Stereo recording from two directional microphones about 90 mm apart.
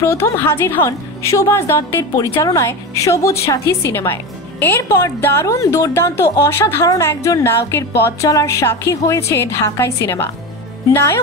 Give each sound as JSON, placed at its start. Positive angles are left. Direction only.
{"t": 0.0, "sound": "a woman's voice", "side_deg": 30}
{"t": 0.8, "sound": "a woman's voice", "side_deg": 35}